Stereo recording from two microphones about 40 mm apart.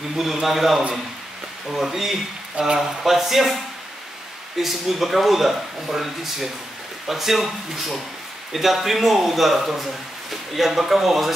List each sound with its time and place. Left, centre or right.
0.1 s speech: centre
2.6 s speech: right
3.0 s speech: centre
4.6 s speech: centre